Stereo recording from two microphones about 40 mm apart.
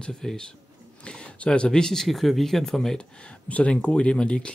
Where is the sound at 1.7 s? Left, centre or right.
Centre.